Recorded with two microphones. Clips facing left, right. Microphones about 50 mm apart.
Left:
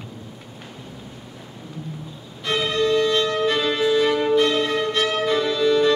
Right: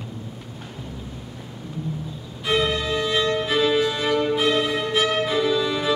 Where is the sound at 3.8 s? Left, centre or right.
Centre.